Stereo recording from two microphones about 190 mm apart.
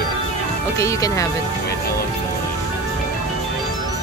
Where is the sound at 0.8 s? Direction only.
15° left (ahead or behind).